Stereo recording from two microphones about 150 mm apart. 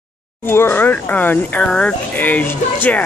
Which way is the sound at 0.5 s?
15° left (ahead or behind).